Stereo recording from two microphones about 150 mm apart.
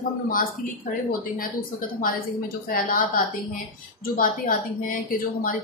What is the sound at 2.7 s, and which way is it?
Speech, 70° left (ahead or behind).